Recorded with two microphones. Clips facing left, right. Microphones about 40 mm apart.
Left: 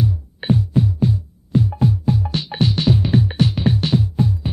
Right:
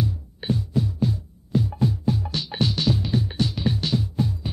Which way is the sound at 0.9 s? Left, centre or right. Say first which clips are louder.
Left 5 dB; centre.